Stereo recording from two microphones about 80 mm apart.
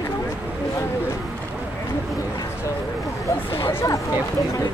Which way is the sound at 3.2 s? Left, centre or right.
Left.